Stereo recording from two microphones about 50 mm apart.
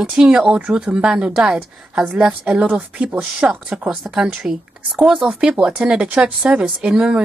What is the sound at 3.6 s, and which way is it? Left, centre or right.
A woman's voice, centre.